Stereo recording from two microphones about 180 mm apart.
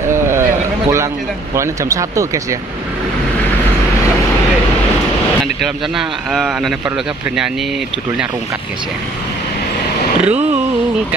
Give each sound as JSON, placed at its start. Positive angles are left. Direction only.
{"t": 0.1, "sound": "a sound", "side_deg": -15}
{"t": 1.5, "sound": "speech", "side_deg": -15}
{"t": 5.9, "sound": "a man's voice", "side_deg": 0}
{"t": 10.2, "sound": "speech", "side_deg": -5}